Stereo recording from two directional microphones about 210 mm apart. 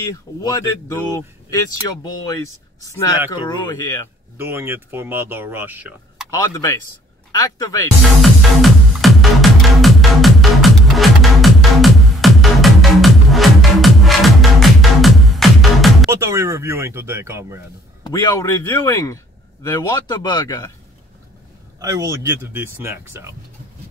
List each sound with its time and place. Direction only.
0.4 s speech: 15° left (ahead or behind)
2.8 s speech: 15° left (ahead or behind)
4.4 s speech: 10° right (ahead or behind)
6.5 s speech: 15° left (ahead or behind)
8.0 s music: centre (ahead or behind)
16.1 s speech: 10° right (ahead or behind)
18.0 s speech: 20° left (ahead or behind)
21.7 s speech: 15° right (ahead or behind)